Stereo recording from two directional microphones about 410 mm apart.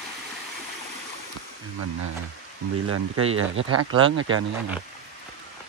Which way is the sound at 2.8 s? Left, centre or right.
Right.